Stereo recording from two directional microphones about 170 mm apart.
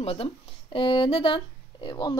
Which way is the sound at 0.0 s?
35° left (ahead or behind).